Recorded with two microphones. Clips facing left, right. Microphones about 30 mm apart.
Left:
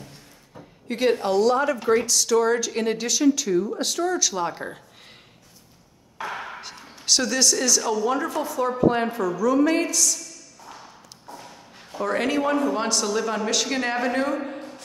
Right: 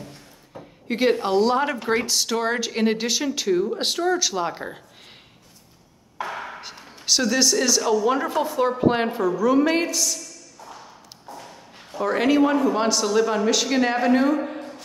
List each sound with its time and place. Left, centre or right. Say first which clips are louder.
0.6 s a sound: right 2 dB; centre
1.2 s speech: even; right
4.0 s speech: right 1 dB; right
6.4 s a woman's voice: right 1 dB; centre